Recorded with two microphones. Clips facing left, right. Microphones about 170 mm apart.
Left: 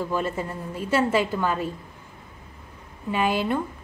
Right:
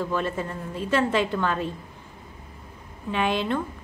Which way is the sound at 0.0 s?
10° left (ahead or behind).